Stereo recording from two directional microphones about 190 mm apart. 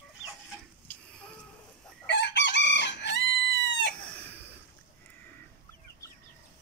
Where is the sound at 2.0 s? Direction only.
65° left (ahead or behind).